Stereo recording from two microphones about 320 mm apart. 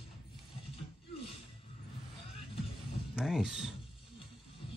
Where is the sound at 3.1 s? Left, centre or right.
Centre.